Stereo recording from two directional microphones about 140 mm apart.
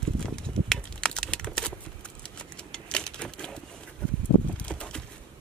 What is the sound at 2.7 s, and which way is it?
Typewriter, 5° left (ahead or behind).